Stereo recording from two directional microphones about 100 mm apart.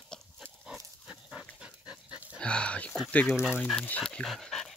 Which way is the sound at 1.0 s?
10° right (ahead or behind).